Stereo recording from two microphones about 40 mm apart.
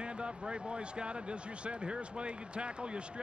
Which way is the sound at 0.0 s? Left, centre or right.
Right.